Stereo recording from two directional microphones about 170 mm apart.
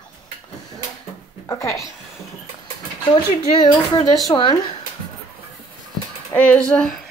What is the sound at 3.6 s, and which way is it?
Speech, 30° left (ahead or behind).